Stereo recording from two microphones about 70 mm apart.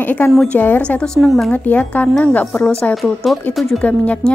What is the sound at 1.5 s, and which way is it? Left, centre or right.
A woman's voice, left.